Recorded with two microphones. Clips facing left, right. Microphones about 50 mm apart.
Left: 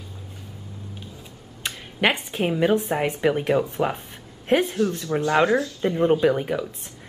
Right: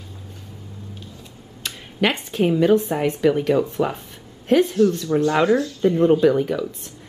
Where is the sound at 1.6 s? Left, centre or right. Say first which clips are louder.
Right 1 dB; centre.